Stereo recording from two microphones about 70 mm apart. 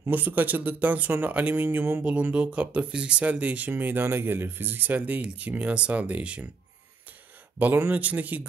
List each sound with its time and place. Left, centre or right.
0.1 s speech: right
7.5 s speech: right